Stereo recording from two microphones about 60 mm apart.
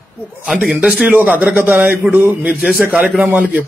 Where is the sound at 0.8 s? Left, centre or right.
Right.